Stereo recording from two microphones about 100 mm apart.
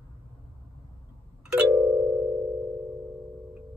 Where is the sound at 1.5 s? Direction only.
10° right (ahead or behind).